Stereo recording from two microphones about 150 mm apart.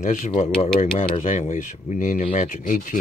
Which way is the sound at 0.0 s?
50° left (ahead or behind).